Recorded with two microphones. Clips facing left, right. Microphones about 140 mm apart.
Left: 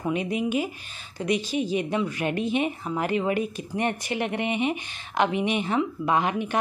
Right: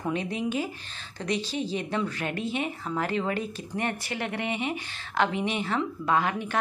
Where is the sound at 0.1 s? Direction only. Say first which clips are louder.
Left 4 dB; 10° left (ahead or behind).